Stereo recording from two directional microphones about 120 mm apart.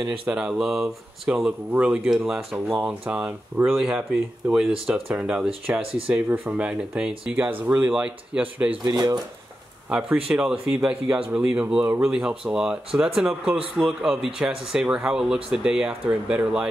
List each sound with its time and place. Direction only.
0.3 s speech: 5° right (ahead or behind)
2.5 s speech: 15° right (ahead or behind)
5.0 s speech: 10° right (ahead or behind)
5.8 s speech: 50° right (ahead or behind)
6.0 s speech: 15° right (ahead or behind)
8.8 s speech: 30° right (ahead or behind)
9.8 s speech: 10° right (ahead or behind)